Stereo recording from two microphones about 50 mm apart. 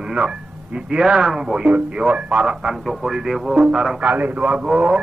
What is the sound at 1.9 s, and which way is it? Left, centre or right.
Speech, right.